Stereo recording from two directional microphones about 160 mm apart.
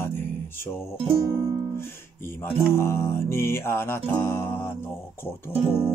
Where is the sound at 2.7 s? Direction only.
15° left (ahead or behind).